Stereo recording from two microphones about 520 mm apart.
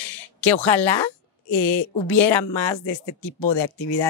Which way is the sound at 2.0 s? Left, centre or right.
Left.